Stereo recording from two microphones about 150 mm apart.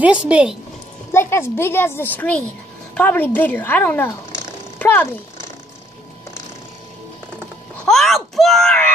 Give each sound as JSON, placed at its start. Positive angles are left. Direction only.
{"t": 0.0, "sound": "a woman's voice", "side_deg": -5}
{"t": 1.3, "sound": "a woman's voice", "side_deg": 15}
{"t": 4.7, "sound": "mechanisms", "side_deg": 10}
{"t": 7.3, "sound": "a sound", "side_deg": 5}